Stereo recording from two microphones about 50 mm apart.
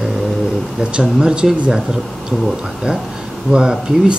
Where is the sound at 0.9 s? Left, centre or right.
Centre.